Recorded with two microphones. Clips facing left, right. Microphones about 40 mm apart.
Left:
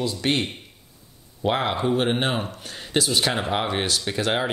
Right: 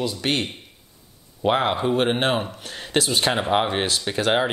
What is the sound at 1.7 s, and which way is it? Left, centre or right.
Speech, centre.